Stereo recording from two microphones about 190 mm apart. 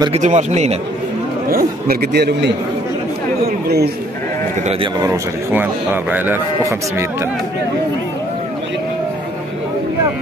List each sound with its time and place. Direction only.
0.2 s a man's voice: 35° right (ahead or behind)
1.5 s a man's voice: 50° right (ahead or behind)
3.6 s a man's voice: 55° right (ahead or behind)
5.0 s speech: 15° right (ahead or behind)